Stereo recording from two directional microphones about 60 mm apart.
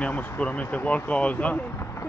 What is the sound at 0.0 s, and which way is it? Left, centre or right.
Speech, left.